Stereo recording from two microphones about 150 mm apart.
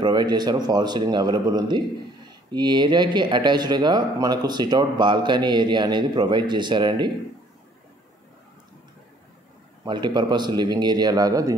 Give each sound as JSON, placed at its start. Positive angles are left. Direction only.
{"t": 0.0, "sound": "speech", "side_deg": -30}
{"t": 9.8, "sound": "speech", "side_deg": -30}